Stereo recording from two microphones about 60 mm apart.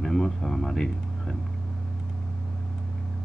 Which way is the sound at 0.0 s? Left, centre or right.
Centre.